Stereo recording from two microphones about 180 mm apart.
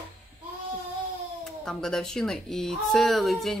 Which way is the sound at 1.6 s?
5° left (ahead or behind).